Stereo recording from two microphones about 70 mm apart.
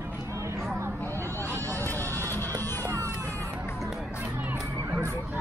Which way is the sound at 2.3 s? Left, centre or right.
Left.